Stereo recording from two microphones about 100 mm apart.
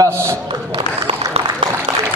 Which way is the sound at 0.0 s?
25° right (ahead or behind).